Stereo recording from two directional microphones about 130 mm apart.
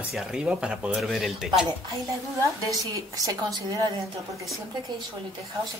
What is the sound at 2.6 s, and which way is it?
A woman's voice, 25° right (ahead or behind).